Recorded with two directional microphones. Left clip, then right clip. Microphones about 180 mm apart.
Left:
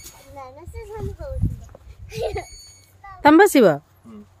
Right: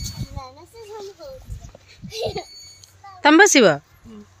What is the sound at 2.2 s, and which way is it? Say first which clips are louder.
Speech: even; 5° right (ahead or behind).